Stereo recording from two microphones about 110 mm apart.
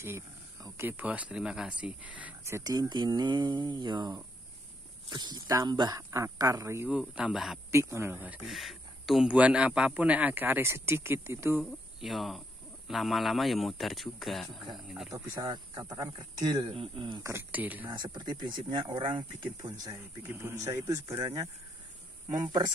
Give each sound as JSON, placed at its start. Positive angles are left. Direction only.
{"t": 0.0, "sound": "a sound", "side_deg": -25}
{"t": 0.8, "sound": "speech", "side_deg": -15}
{"t": 2.6, "sound": "speech", "side_deg": -35}
{"t": 6.9, "sound": "a man's voice", "side_deg": -10}
{"t": 7.7, "sound": "speech", "side_deg": -25}
{"t": 8.5, "sound": "speech", "side_deg": 0}
{"t": 11.6, "sound": "a man's voice", "side_deg": 0}
{"t": 15.1, "sound": "speech", "side_deg": -25}
{"t": 15.5, "sound": "speech", "side_deg": -40}
{"t": 16.6, "sound": "speech", "side_deg": -55}
{"t": 17.2, "sound": "speech", "side_deg": -20}
{"t": 17.8, "sound": "speech", "side_deg": -40}
{"t": 20.3, "sound": "speech", "side_deg": -25}
{"t": 22.3, "sound": "speech", "side_deg": -45}